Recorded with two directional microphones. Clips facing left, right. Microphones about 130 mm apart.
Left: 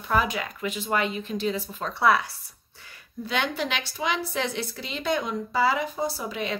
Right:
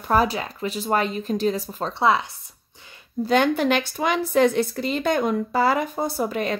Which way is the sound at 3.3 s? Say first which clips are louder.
Right 9 dB; 45° right (ahead or behind).